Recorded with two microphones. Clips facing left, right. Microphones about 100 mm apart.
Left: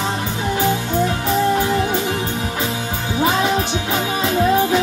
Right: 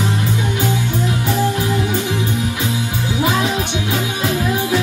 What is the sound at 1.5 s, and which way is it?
Music, 35° left (ahead or behind).